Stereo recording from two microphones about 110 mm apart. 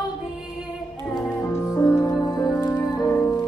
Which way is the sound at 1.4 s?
30° left (ahead or behind).